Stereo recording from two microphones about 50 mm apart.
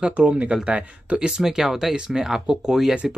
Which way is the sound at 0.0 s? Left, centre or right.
Right.